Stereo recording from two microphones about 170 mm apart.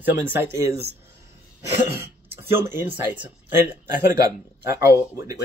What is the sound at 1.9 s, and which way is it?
Speech, 15° right (ahead or behind).